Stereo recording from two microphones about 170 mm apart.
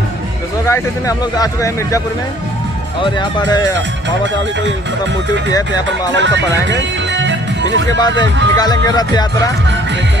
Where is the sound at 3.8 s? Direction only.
90° right.